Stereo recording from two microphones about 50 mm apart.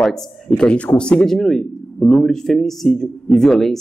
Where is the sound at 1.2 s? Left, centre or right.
Centre.